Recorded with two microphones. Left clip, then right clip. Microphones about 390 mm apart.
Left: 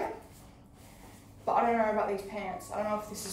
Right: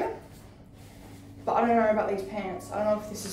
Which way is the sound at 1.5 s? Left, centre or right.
Centre.